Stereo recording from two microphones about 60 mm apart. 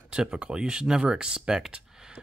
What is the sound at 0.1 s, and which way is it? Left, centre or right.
Speech, centre.